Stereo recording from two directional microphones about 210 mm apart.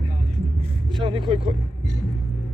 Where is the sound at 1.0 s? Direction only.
20° right (ahead or behind).